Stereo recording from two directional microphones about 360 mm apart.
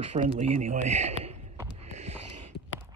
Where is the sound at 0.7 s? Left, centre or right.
Centre.